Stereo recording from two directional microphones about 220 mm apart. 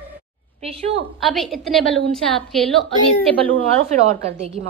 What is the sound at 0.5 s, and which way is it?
Speech, 25° right (ahead or behind).